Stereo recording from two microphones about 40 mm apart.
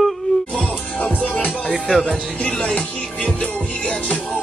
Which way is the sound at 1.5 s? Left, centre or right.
Right.